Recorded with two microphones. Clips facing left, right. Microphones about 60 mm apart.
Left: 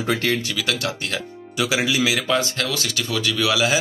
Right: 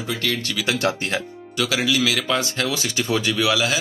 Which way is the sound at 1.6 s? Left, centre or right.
Centre.